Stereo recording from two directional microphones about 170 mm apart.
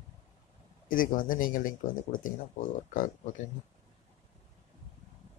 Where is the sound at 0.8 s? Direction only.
55° left (ahead or behind).